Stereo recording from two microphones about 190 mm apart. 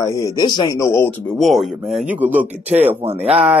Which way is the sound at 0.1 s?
20° left (ahead or behind).